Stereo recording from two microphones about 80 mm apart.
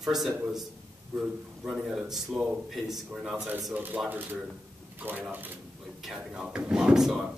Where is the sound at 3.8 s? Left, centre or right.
Right.